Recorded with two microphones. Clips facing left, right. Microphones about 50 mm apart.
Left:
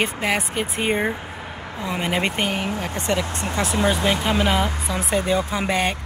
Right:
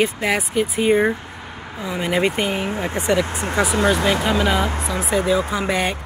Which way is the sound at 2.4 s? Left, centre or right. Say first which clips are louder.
Right 2 dB; left.